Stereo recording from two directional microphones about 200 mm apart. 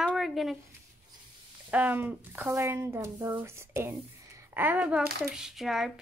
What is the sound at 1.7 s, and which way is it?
Speech, 10° right (ahead or behind).